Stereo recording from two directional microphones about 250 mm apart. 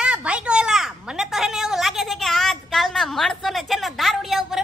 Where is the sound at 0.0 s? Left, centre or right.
Centre.